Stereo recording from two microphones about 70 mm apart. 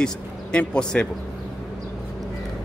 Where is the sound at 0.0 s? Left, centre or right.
Centre.